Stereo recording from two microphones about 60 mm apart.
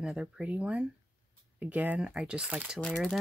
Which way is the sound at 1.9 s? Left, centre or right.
Centre.